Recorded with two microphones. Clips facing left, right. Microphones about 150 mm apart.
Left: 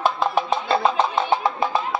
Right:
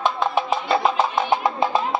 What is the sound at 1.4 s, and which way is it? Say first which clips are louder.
Music: right 1 dB; 20° right (ahead or behind).